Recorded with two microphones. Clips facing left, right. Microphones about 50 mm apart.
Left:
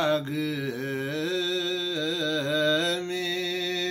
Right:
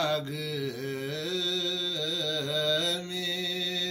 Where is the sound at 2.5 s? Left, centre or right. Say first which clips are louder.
Left 5 dB; left.